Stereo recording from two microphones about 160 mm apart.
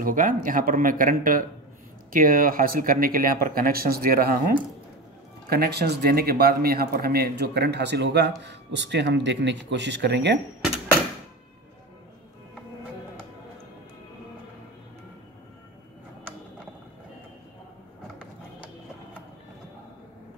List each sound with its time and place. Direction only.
0.0 s speech: 60° right (ahead or behind)
5.5 s a man's voice: 85° right